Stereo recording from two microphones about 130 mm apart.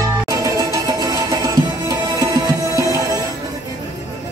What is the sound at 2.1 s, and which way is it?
Music, 30° right (ahead or behind).